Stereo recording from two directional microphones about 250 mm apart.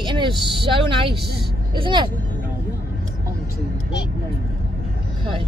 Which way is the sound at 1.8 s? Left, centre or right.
Centre.